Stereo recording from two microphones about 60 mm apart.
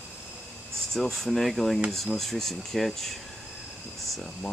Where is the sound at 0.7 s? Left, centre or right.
Centre.